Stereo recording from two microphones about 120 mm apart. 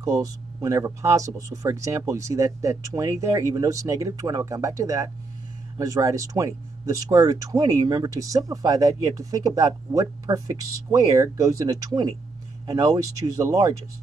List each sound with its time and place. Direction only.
0.0 s speech: 30° right (ahead or behind)